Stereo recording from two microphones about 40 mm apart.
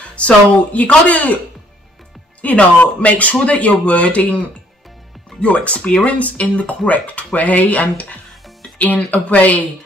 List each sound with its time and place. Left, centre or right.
0.2 s speech: left
2.4 s speech: left
5.4 s speech: left